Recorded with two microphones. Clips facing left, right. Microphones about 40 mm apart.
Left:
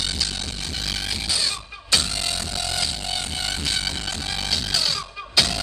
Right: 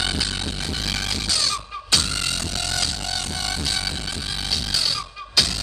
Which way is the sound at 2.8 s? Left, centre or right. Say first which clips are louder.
Even; left.